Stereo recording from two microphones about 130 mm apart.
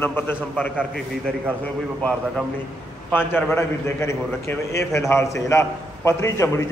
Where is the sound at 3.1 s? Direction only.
15° left (ahead or behind).